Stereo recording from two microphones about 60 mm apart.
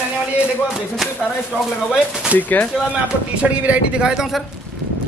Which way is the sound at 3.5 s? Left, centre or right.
Right.